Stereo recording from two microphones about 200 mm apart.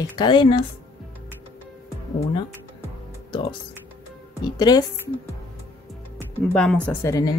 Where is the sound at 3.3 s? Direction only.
25° left (ahead or behind).